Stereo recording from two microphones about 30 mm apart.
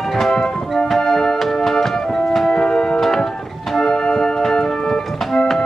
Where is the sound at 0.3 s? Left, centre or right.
Left.